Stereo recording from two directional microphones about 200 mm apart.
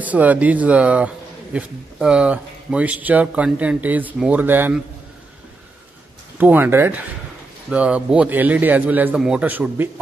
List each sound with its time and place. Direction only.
0.0 s speech: 5° right (ahead or behind)
6.3 s speech: 10° right (ahead or behind)